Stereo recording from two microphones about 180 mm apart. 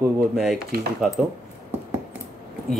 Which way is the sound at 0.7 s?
55° right (ahead or behind).